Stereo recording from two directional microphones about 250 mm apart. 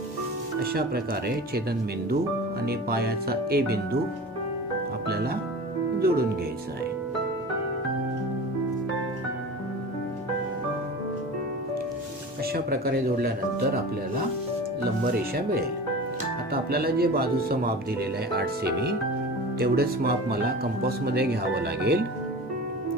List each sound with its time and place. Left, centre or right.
0.6 s speech: right
5.0 s speech: right
12.5 s speech: right
15.0 s speech: right